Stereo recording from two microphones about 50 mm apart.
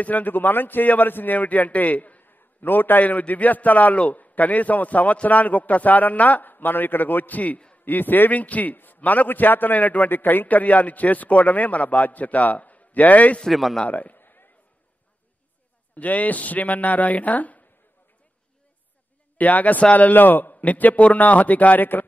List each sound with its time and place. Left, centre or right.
0.0 s a man's voice: left
13.5 s speech: centre
13.8 s a sound: left
15.9 s a man's voice: left
19.3 s a man's voice: left